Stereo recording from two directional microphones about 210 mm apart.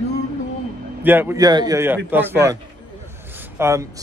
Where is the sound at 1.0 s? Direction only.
10° right (ahead or behind).